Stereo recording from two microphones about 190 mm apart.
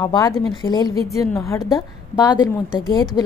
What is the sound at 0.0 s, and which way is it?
A woman's voice, 20° left (ahead or behind).